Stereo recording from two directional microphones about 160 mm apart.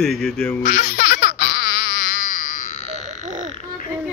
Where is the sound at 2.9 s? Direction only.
45° right (ahead or behind).